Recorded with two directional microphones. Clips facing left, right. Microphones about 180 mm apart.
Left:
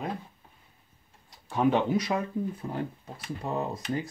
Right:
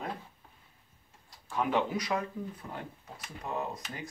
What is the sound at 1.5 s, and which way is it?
Speech, 25° left (ahead or behind).